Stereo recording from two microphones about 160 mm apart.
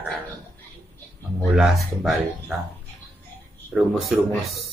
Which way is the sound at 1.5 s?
Centre (ahead or behind).